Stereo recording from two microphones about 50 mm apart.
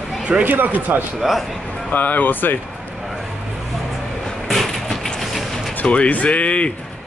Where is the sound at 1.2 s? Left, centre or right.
Centre.